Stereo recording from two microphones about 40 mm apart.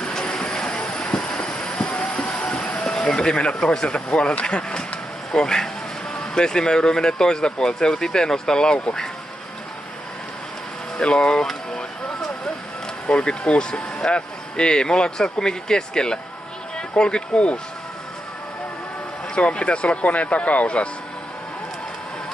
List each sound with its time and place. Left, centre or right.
0.1 s train: centre
1.9 s train: left
2.8 s vehicle: centre
3.3 s speech: left
11.0 s speech: left
11.4 s a sound: centre
13.2 s speech: left
19.3 s speech: left